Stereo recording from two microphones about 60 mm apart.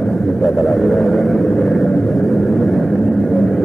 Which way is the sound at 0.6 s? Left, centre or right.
Centre.